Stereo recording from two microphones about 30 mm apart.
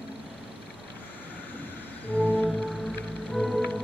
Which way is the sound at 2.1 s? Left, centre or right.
Left.